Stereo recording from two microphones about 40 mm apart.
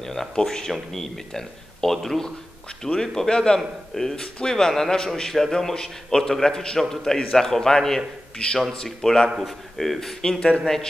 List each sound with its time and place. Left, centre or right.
0.0 s a man's voice: centre
8.4 s a man's voice: left
9.8 s a man's voice: centre